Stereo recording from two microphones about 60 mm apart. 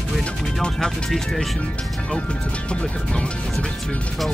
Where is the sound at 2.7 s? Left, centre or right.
Centre.